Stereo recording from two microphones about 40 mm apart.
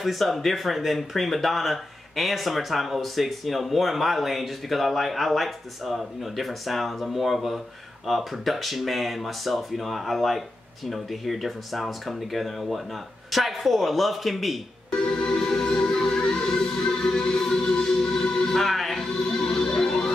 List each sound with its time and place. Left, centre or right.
0.0 s speech: centre
14.9 s music: left